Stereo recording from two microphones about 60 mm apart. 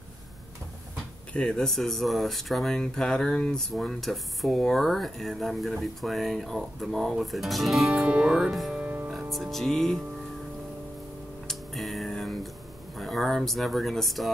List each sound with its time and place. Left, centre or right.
1.3 s speech: centre
3.7 s speech: centre
8.0 s music: centre
8.5 s speech: centre
9.1 s music: centre
11.4 s tick: centre
12.9 s speech: centre